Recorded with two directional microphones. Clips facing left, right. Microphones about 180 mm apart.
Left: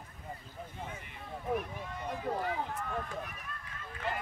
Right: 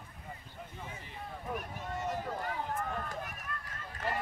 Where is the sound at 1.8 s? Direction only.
45° right (ahead or behind).